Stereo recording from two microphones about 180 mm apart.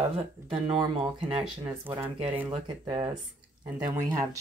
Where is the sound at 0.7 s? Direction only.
25° right (ahead or behind).